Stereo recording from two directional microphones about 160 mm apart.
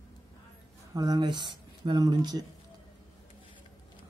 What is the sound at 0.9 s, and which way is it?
Speech, 25° right (ahead or behind).